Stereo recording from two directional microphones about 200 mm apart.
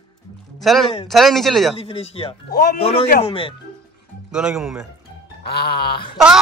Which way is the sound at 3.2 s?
25° left (ahead or behind).